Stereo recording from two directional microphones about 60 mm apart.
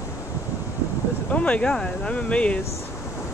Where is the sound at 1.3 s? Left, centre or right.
Left.